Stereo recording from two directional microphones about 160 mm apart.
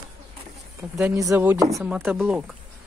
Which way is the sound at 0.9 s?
20° right (ahead or behind).